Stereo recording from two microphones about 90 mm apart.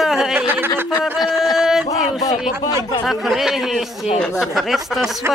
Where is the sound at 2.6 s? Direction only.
45° left (ahead or behind).